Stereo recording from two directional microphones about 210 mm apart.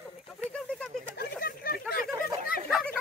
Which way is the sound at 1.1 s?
45° left (ahead or behind).